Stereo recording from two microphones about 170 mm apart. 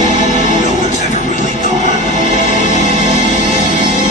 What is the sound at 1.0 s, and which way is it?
Music, 45° left (ahead or behind).